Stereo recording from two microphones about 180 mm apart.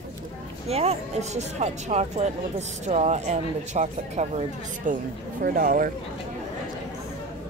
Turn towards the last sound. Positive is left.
turn(degrees=-50)  # may be behind; listen again after turning